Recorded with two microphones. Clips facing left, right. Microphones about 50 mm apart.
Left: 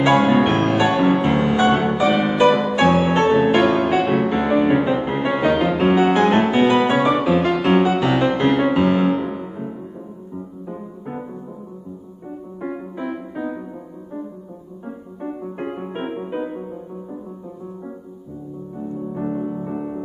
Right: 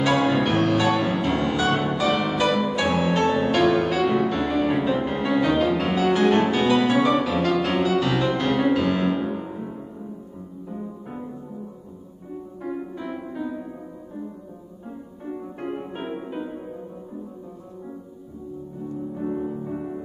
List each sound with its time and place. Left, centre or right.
0.0 s music: left
10.7 s music: left
12.5 s music: left
14.9 s music: left
19.1 s music: left